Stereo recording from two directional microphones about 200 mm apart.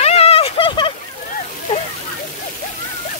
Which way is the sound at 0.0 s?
30° left (ahead or behind).